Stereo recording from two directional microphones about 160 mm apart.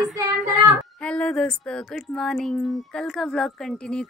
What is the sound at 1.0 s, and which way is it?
A woman's voice, 5° left (ahead or behind).